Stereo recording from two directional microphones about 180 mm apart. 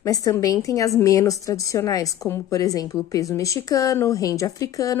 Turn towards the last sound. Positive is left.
turn(degrees=20)  # may be behind; listen again after turning